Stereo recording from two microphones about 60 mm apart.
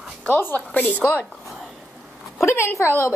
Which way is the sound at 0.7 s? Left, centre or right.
Left.